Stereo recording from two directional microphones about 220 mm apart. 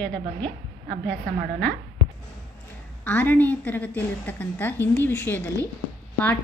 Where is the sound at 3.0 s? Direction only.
5° left (ahead or behind).